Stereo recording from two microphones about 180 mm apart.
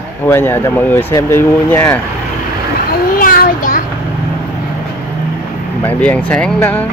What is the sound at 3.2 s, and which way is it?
Child singing, 50° left (ahead or behind).